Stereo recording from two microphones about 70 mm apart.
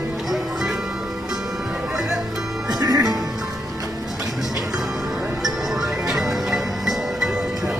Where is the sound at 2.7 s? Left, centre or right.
Right.